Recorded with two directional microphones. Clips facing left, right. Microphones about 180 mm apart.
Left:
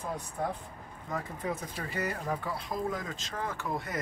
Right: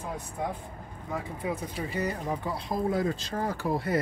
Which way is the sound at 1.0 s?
10° right (ahead or behind).